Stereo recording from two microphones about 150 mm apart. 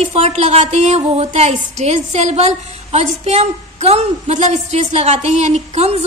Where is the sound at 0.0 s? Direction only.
45° right (ahead or behind).